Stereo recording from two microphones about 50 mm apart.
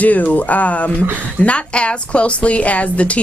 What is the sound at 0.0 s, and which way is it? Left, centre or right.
A woman's voice, left.